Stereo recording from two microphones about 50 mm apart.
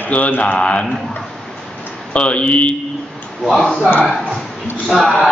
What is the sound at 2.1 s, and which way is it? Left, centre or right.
Speech, left.